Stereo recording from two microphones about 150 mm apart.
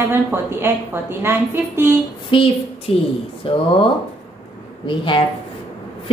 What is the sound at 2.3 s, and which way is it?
Speech, 35° left (ahead or behind).